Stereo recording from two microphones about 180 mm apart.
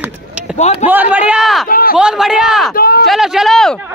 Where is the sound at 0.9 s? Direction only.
10° right (ahead or behind).